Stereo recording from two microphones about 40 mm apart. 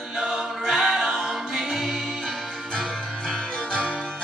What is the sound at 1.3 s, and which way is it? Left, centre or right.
Choir, centre.